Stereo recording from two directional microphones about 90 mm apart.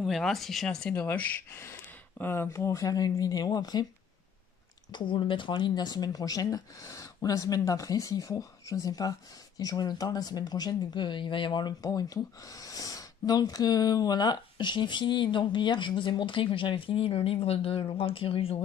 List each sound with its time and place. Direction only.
0.0 s speech: centre (ahead or behind)
1.5 s speech: 30° left (ahead or behind); by 3.8 s 50° left (ahead or behind)
4.9 s speech: 65° left (ahead or behind)
11.8 s speech: 40° left (ahead or behind); by 18.6 s 90° left